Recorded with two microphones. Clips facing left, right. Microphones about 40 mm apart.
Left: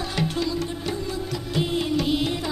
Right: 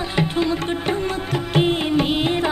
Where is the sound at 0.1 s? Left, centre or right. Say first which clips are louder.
Right 6 dB; right.